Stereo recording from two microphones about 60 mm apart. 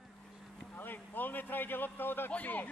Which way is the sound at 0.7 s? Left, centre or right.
Left.